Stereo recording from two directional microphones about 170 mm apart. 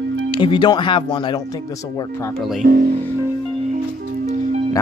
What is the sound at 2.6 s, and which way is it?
Speech, 55° right (ahead or behind).